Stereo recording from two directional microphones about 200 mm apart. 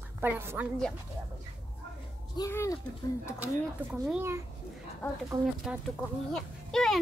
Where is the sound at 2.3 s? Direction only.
15° left (ahead or behind).